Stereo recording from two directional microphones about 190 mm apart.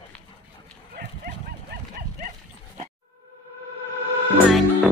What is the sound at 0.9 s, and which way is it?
Cattle, 55° right (ahead or behind).